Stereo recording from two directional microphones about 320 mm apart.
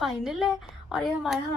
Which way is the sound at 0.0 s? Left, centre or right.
Centre.